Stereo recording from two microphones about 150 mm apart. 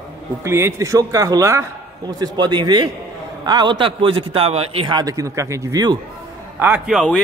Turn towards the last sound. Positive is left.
turn(degrees=0)  # may be behind; listen again after turning